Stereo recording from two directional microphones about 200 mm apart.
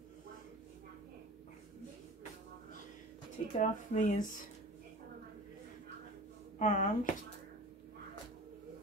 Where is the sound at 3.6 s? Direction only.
40° left (ahead or behind).